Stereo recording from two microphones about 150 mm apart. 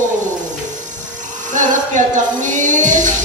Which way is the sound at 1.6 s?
55° right (ahead or behind).